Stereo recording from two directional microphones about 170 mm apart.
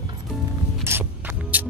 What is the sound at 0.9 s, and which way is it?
Music, 10° right (ahead or behind).